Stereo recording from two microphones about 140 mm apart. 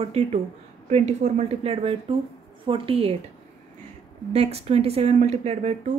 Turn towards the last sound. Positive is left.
turn(degrees=-50)  # may be behind; listen again after turning